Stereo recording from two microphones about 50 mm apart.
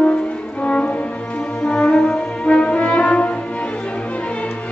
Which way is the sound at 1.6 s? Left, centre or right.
Left.